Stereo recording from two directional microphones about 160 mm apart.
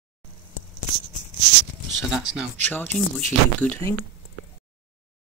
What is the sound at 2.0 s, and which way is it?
Speech, 5° right (ahead or behind).